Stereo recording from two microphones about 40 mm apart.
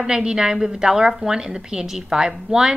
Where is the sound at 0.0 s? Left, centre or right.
Centre.